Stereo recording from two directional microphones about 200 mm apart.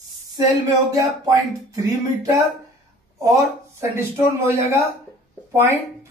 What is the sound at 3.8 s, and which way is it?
Speech, 15° right (ahead or behind).